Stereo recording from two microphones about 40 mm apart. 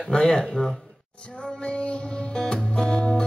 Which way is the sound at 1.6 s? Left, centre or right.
Left.